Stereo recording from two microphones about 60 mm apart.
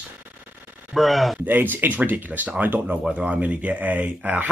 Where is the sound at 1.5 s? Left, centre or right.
Right.